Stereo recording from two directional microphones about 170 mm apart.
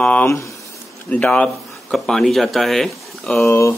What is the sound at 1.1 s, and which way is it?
Speech, 5° left (ahead or behind).